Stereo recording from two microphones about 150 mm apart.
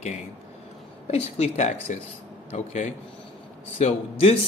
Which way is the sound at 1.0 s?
45° left (ahead or behind).